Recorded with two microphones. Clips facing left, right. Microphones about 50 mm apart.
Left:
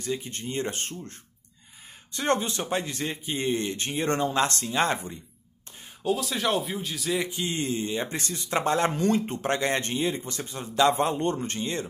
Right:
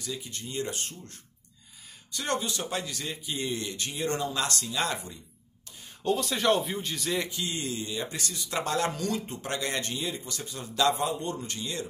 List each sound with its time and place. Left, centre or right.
0.0 s speech: left
2.1 s speech: left
6.0 s speech: centre
7.2 s speech: left